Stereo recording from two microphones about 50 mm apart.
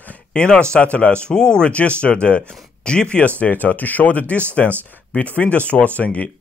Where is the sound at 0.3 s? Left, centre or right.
Centre.